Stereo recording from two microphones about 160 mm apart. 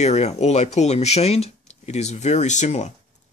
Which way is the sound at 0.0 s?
40° left (ahead or behind).